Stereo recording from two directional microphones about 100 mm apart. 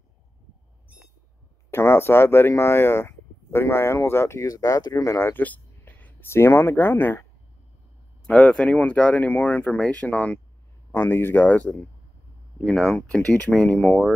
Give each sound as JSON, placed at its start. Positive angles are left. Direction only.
{"t": 1.7, "sound": "speech", "side_deg": 25}
{"t": 8.3, "sound": "speech", "side_deg": 10}
{"t": 12.6, "sound": "speech", "side_deg": 5}